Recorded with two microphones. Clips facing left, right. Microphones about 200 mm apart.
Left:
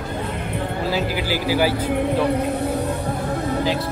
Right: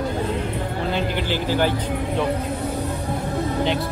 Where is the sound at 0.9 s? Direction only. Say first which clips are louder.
Even; 5° left (ahead or behind).